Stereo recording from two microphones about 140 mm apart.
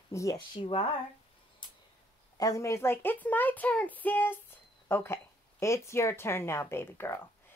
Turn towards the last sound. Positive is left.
turn(degrees=15)  # may be behind; listen again after turning